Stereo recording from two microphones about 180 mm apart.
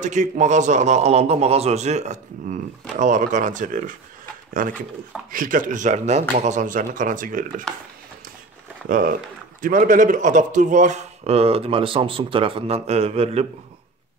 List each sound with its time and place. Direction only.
0.0 s speech: 40° right (ahead or behind)
8.8 s speech: 50° right (ahead or behind)